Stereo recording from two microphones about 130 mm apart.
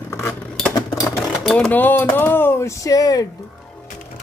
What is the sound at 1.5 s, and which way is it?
Speech, 10° left (ahead or behind).